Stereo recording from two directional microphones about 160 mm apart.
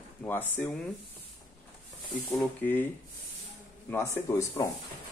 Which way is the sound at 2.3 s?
10° left (ahead or behind).